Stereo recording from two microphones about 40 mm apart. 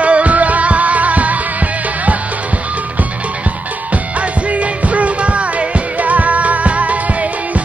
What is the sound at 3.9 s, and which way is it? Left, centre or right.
Music, right.